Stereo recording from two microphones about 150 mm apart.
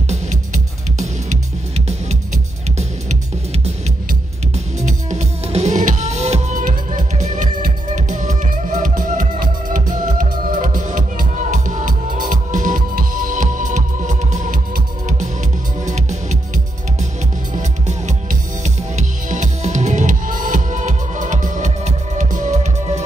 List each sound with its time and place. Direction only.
4.8 s music: 45° right (ahead or behind)
6.6 s music: 55° right (ahead or behind)
15.9 s music: 50° right (ahead or behind)
17.6 s music: 55° right (ahead or behind)